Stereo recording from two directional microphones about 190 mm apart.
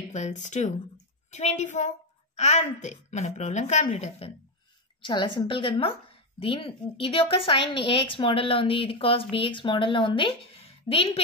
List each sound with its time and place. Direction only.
0.1 s a woman's voice: 40° left (ahead or behind)
5.0 s a woman's voice: 25° left (ahead or behind)